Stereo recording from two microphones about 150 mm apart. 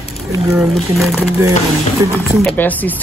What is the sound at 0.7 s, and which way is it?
Speech, centre (ahead or behind).